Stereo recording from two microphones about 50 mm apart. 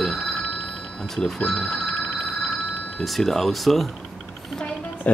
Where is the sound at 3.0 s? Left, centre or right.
Centre.